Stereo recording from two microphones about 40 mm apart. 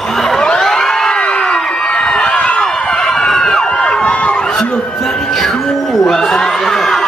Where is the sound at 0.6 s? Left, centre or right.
Centre; by 2.7 s left.